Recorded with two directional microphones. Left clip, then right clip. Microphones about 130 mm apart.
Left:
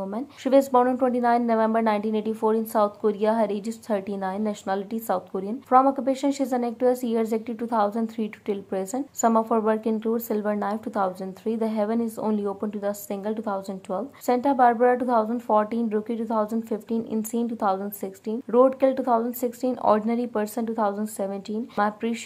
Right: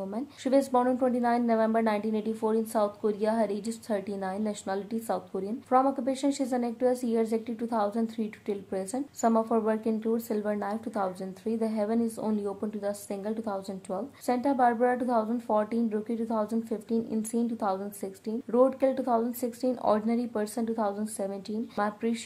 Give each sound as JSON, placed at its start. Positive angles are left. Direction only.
{"t": 0.1, "sound": "a woman's voice", "side_deg": 25}